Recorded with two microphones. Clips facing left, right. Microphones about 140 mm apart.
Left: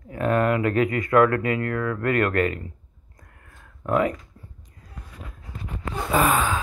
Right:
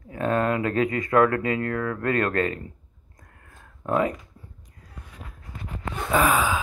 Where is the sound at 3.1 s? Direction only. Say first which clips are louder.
Even; 20° right (ahead or behind).